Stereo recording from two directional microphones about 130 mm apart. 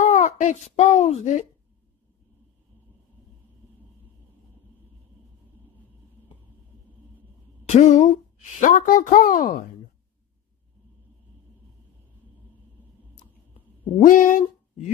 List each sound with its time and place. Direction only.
0.0 s speech: 70° left (ahead or behind)
7.6 s a woman's voice: 60° left (ahead or behind); by 9.6 s 90° left
14.0 s speech: 90° left